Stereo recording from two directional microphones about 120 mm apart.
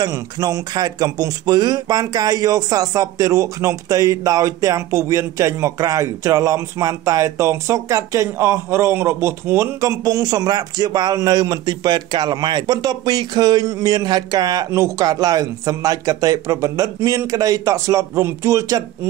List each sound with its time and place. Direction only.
0.0 s speech: 30° right (ahead or behind)